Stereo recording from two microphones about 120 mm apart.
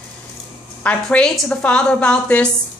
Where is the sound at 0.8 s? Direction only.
10° left (ahead or behind).